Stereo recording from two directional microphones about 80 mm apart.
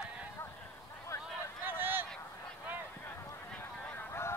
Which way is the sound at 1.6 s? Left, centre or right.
Right.